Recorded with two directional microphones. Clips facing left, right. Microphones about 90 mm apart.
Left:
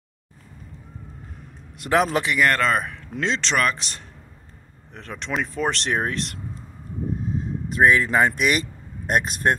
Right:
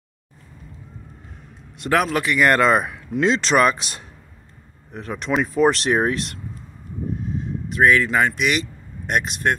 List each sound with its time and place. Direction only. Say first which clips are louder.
1.8 s speech: right 1 dB; 10° right (ahead or behind)
7.3 s vehicle: even; 35° left (ahead or behind)
8.3 s speech: even; 45° left (ahead or behind)